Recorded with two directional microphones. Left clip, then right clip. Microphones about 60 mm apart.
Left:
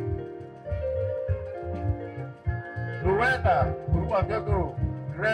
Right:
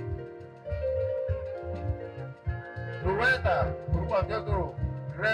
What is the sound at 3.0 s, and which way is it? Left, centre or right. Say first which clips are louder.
Speech: left 2 dB; centre.